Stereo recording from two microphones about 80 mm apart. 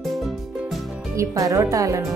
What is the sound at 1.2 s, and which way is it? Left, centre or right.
Speech, right.